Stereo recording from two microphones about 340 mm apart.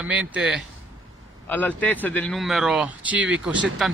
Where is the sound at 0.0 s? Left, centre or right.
Centre.